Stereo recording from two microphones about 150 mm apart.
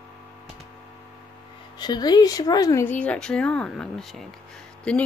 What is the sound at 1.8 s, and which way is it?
Speech, 25° left (ahead or behind).